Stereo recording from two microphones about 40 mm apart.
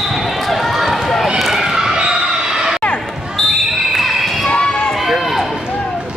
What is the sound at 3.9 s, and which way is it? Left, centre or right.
Basketball bounce, centre.